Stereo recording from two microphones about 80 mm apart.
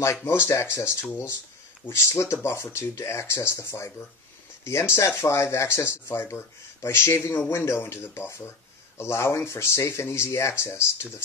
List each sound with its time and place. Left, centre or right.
0.0 s speech: left